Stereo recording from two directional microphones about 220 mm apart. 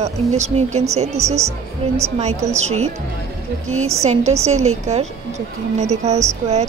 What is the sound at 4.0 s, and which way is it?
A woman's voice, 30° right (ahead or behind).